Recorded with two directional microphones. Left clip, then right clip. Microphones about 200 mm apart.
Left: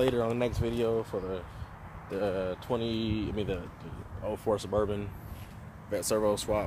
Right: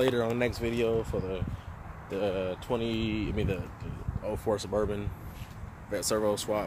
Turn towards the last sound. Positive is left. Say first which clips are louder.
# even
turn(degrees=15)  # may be behind; listen again after turning